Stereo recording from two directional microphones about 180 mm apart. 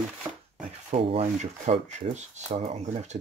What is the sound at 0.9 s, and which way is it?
Speech, 35° right (ahead or behind).